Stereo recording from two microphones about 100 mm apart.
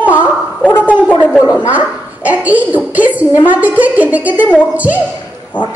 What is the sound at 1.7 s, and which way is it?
A woman's voice, 15° right (ahead or behind).